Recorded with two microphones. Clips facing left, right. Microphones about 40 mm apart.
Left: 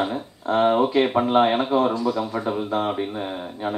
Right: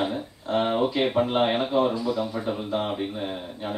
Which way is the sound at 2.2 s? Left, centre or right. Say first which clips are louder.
Left 4 dB; centre.